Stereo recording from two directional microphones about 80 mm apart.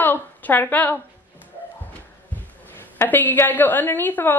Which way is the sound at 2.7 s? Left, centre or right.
Left.